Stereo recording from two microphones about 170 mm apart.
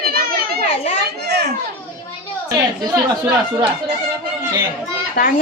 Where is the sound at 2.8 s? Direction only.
20° right (ahead or behind).